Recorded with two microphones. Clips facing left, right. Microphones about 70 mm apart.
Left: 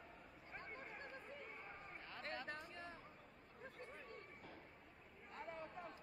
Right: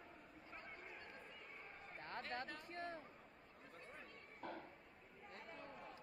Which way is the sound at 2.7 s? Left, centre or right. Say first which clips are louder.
Right 5 dB; right.